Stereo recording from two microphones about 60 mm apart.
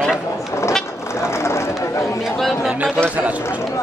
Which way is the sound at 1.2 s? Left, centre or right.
Left.